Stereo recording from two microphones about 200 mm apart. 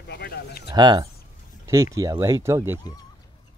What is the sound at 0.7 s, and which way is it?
Speech, 20° right (ahead or behind).